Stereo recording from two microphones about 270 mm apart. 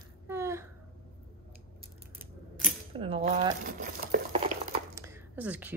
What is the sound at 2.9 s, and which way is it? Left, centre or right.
Speech, right.